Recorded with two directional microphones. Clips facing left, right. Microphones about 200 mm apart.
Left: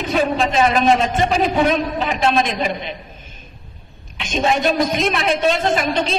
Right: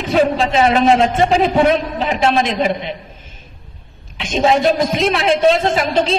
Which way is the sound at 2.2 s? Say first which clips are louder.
Right 2 dB; 30° right (ahead or behind).